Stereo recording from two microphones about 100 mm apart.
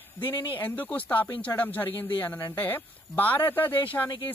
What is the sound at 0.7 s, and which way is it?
Speech, 15° left (ahead or behind).